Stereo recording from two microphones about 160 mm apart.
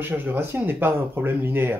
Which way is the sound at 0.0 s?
15° right (ahead or behind).